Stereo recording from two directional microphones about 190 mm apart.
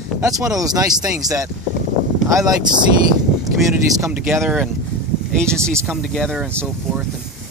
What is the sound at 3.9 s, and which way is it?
Speech, 15° right (ahead or behind).